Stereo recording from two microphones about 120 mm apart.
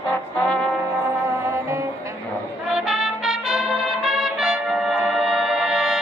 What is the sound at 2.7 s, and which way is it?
Brass instrument, 5° right (ahead or behind).